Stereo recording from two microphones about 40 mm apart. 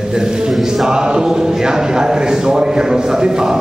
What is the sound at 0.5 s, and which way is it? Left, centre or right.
Chant, centre.